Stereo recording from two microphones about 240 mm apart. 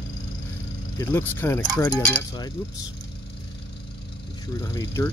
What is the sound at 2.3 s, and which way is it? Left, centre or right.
Speech, centre.